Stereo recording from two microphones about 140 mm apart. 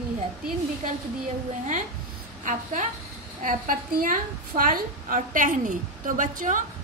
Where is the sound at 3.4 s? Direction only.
75° right (ahead or behind).